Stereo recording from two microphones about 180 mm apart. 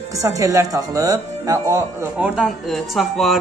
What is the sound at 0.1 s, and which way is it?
Speech, 20° right (ahead or behind).